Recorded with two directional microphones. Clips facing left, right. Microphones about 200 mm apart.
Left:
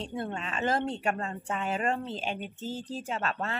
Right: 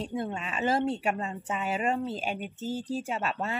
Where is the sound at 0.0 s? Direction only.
10° right (ahead or behind).